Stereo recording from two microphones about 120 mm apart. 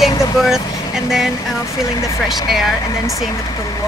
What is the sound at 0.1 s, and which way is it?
Vehicle, 30° left (ahead or behind).